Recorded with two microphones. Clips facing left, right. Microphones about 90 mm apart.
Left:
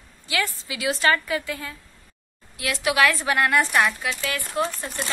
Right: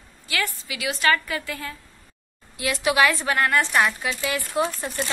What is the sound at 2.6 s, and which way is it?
A woman's voice, centre (ahead or behind).